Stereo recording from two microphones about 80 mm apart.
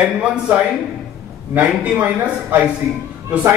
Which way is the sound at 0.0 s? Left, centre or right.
Centre.